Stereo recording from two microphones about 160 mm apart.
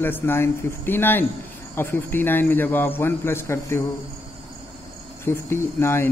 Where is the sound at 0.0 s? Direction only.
15° left (ahead or behind).